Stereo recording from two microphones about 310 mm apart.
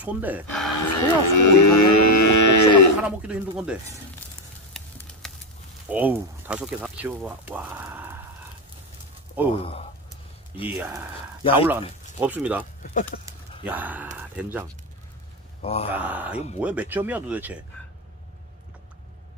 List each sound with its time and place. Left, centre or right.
0.0 s speech: centre
0.7 s cattle: left
3.0 s speech: centre
4.7 s sizzle: centre
5.9 s speech: centre
9.5 s speech: centre
10.8 s speech: centre
12.2 s speech: centre
13.7 s speech: centre
15.6 s speech: centre
15.9 s speech: centre